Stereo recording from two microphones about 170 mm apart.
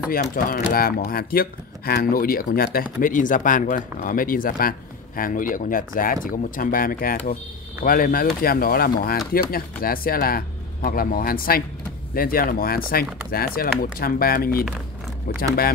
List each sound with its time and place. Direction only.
0.1 s speech: 55° left (ahead or behind)